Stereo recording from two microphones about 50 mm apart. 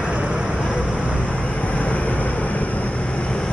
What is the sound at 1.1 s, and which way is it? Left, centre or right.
Vehicle, left.